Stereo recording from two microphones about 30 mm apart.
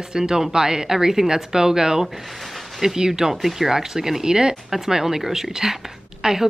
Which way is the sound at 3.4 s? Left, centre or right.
Centre.